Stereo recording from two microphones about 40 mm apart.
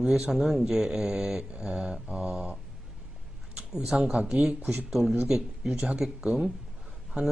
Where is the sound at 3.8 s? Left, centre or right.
Centre.